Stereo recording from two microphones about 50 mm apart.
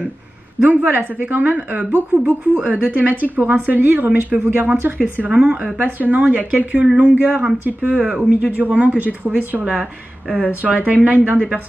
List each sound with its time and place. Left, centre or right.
0.7 s a woman's voice: right
2.5 s a woman's voice: right
5.3 s a woman's voice: right
7.8 s speech: centre
8.5 s a woman's voice: right
10.3 s a woman's voice: right